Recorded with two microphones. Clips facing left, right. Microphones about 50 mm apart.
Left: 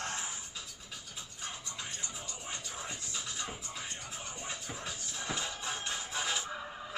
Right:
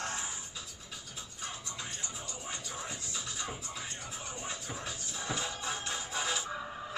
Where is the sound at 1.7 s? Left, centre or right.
Centre.